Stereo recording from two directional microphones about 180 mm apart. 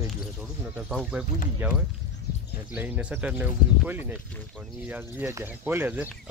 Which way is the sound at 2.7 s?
10° right (ahead or behind).